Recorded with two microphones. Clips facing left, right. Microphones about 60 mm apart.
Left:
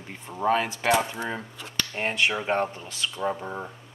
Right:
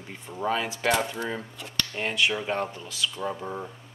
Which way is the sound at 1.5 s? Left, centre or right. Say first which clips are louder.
Even; centre.